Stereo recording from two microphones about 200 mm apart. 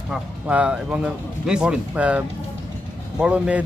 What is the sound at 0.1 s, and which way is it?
Speech, 5° right (ahead or behind).